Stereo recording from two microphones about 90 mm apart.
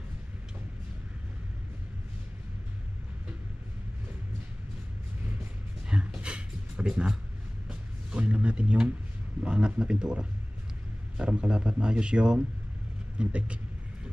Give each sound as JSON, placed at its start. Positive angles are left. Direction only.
{"t": 5.9, "sound": "music", "side_deg": -10}
{"t": 9.4, "sound": "a man's voice", "side_deg": -10}